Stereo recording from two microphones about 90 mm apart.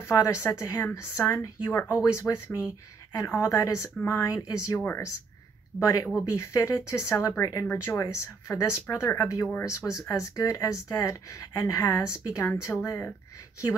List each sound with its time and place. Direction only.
0.1 s speech: 35° left (ahead or behind)
4.7 s speech: 25° left (ahead or behind)
5.8 s speech: 40° left (ahead or behind)